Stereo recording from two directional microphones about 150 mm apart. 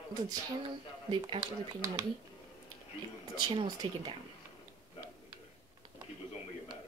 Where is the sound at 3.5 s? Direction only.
30° right (ahead or behind).